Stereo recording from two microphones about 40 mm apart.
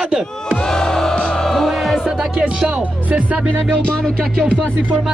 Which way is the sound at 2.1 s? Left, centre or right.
Centre.